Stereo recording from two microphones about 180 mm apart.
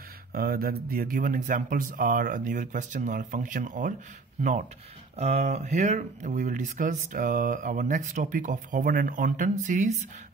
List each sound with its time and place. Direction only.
0.3 s speech: 55° right (ahead or behind)